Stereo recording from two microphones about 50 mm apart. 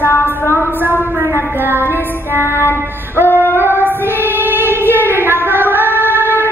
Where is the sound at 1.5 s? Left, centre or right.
Right.